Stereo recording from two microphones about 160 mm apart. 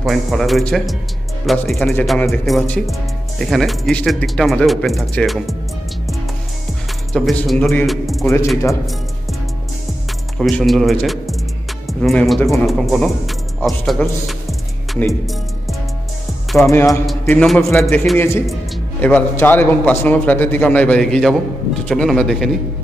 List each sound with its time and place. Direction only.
0.0 s speech: centre (ahead or behind)
7.1 s speech: centre (ahead or behind)
10.4 s speech: centre (ahead or behind)
16.7 s a man's voice: 20° left (ahead or behind); by 22.6 s centre (ahead or behind)